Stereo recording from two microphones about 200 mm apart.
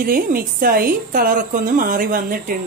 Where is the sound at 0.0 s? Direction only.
45° right (ahead or behind).